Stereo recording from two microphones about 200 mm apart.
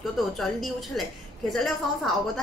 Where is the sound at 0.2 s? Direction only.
Centre (ahead or behind).